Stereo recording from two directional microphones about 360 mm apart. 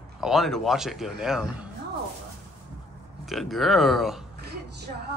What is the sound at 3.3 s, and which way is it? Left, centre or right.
Speech, centre.